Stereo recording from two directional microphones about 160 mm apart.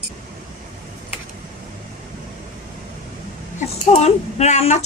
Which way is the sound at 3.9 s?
45° left (ahead or behind).